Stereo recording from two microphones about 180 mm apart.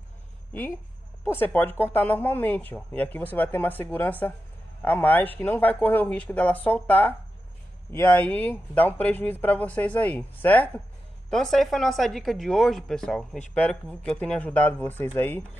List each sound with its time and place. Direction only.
0.5 s speech: 10° left (ahead or behind)